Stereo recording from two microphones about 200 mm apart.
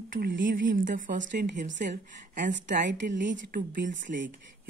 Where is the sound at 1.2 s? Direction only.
60° right (ahead or behind).